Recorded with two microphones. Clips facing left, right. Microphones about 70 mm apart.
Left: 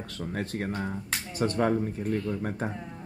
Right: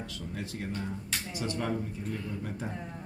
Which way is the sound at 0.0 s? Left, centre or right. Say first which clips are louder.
Left 5 dB; left.